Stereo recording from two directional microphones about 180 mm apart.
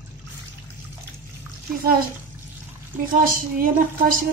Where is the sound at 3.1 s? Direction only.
50° right (ahead or behind).